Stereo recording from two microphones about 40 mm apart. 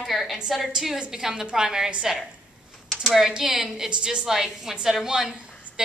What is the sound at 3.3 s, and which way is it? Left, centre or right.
Speech, centre.